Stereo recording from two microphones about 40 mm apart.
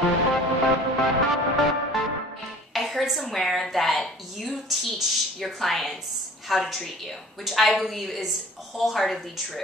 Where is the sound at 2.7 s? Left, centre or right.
Centre.